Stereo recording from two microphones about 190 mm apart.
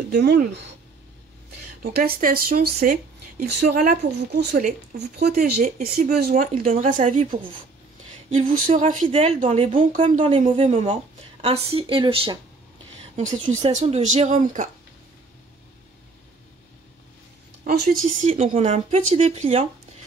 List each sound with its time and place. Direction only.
0.1 s speech: 60° right (ahead or behind)
1.8 s speech: 55° right (ahead or behind); by 7.2 s 35° right (ahead or behind)
8.3 s a woman's voice: 40° right (ahead or behind); by 12.4 s 25° right (ahead or behind)
13.1 s a woman's voice: 40° right (ahead or behind)
17.6 s speech: 50° right (ahead or behind)
18.3 s a woman's voice: 35° right (ahead or behind)